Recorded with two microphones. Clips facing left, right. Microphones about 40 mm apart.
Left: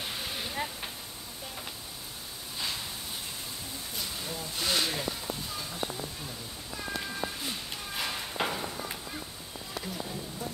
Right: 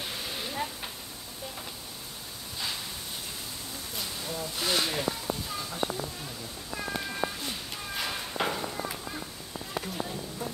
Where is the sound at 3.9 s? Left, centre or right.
Centre.